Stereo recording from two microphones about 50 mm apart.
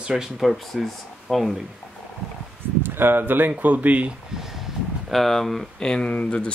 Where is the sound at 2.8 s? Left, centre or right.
Right.